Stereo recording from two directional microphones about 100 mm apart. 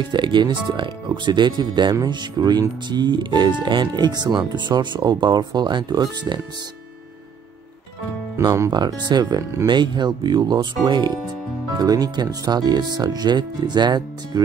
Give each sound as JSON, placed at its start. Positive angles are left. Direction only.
{"t": 0.1, "sound": "speech", "side_deg": -50}
{"t": 8.4, "sound": "speech", "side_deg": -35}